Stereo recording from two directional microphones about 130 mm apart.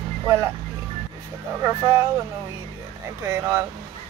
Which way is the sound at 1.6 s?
20° right (ahead or behind).